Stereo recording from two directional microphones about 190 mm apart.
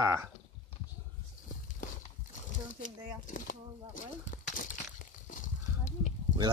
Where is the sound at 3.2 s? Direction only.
45° left (ahead or behind).